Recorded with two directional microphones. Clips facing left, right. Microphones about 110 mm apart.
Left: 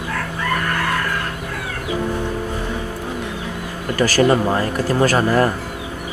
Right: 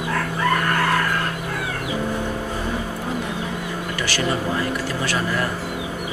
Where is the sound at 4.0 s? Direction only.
45° left (ahead or behind).